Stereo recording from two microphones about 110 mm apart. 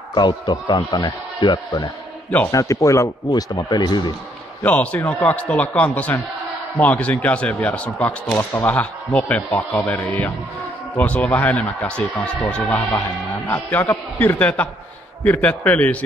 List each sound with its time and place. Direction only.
0.1 s a man's voice: 40° left (ahead or behind)
0.7 s speech: 30° left (ahead or behind)
2.5 s speech: 30° left (ahead or behind)
4.6 s speech: 15° left (ahead or behind)